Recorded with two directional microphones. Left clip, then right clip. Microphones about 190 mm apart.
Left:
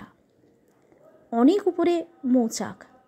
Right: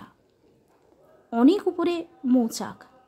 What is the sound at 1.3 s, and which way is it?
A woman's voice, 10° left (ahead or behind).